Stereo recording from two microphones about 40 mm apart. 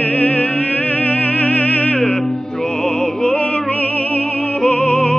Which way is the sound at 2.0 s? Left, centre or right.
Centre.